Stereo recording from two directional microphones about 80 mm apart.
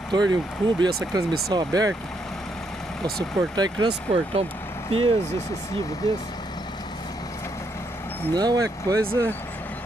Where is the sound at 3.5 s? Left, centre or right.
Right.